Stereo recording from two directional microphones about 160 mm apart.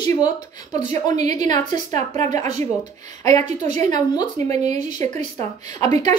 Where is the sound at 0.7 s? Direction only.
45° right (ahead or behind).